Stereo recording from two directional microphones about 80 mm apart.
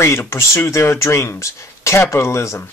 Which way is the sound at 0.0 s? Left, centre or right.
Left.